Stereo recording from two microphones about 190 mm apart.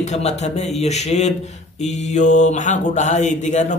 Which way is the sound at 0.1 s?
35° left (ahead or behind).